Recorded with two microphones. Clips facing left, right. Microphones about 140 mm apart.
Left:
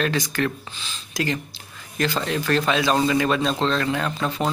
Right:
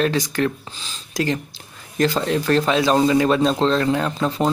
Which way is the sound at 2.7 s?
30° right (ahead or behind).